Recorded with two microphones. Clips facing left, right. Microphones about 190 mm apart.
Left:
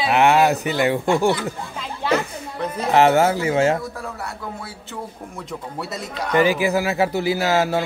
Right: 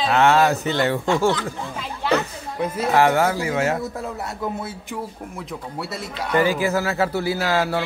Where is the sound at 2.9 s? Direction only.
25° left (ahead or behind).